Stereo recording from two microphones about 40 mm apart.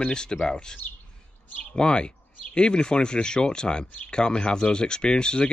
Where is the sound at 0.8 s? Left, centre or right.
Left.